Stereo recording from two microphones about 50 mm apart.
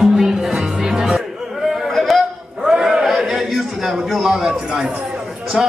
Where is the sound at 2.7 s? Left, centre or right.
Centre.